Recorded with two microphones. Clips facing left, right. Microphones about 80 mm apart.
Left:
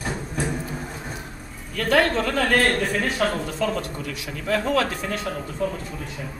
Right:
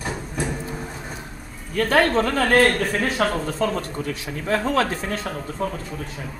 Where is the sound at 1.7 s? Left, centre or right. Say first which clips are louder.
Right 2 dB; right.